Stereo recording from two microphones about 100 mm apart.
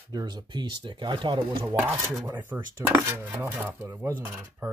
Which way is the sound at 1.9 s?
25° right (ahead or behind).